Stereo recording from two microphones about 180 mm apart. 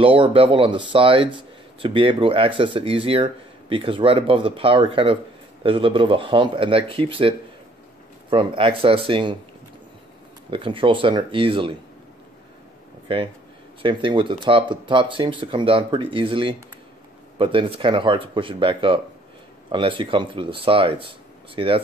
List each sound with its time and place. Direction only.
0.0 s speech: 30° right (ahead or behind)
10.5 s speech: 30° right (ahead or behind)
13.1 s speech: 30° right (ahead or behind)